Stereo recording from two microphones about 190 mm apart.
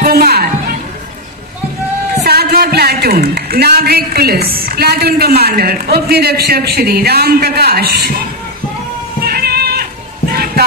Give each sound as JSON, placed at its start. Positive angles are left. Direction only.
{"t": 0.0, "sound": "music", "side_deg": -55}
{"t": 2.2, "sound": "a woman's voice", "side_deg": -55}
{"t": 9.2, "sound": "a sound", "side_deg": -55}
{"t": 10.3, "sound": "music", "side_deg": -55}